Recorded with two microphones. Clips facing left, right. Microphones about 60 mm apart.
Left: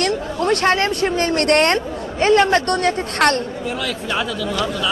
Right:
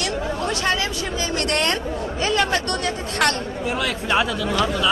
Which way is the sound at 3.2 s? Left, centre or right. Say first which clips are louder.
Left 4 dB; centre.